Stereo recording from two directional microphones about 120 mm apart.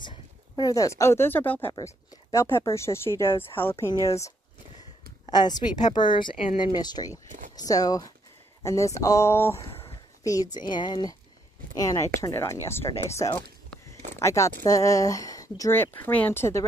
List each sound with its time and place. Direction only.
0.0 s speech: 35° left (ahead or behind); by 1.7 s 15° left (ahead or behind)
1.7 s speech: 30° left (ahead or behind)
5.2 s speech: 35° left (ahead or behind)
7.2 s a sound: 90° right
7.5 s speech: 30° left (ahead or behind)
15.7 s speech: 15° left (ahead or behind)